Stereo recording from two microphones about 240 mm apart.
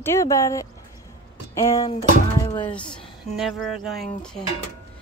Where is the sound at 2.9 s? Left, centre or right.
Centre.